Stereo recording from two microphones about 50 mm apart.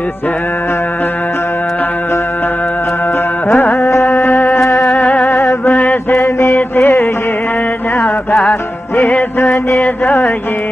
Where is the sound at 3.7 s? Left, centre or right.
Left.